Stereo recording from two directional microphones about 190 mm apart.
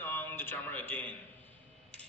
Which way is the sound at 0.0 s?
10° left (ahead or behind).